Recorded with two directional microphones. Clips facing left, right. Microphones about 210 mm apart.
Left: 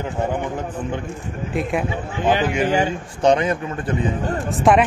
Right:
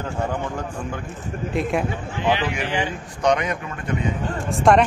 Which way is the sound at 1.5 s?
Centre (ahead or behind).